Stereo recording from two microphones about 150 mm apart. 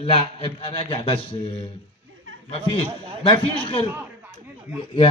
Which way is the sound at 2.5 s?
35° left (ahead or behind).